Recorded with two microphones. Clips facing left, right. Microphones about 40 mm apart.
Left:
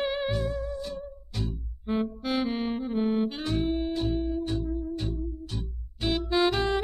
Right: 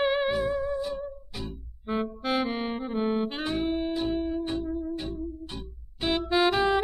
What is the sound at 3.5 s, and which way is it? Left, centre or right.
Music, centre.